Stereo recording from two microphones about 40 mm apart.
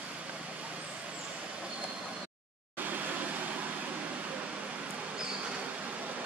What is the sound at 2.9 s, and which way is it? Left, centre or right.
Vehicle, right.